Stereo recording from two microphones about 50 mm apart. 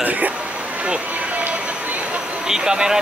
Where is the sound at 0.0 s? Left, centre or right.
Right.